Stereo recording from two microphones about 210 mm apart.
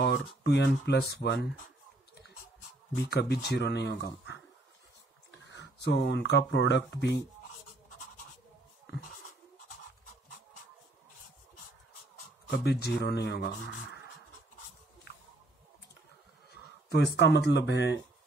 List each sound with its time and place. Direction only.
0.0 s speech: 55° left (ahead or behind)
3.1 s speech: 50° left (ahead or behind)
5.5 s speech: 60° left (ahead or behind)
12.4 s speech: 50° left (ahead or behind)
16.9 s speech: 55° left (ahead or behind)